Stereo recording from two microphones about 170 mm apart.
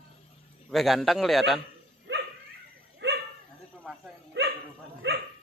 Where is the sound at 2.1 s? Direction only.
90° right.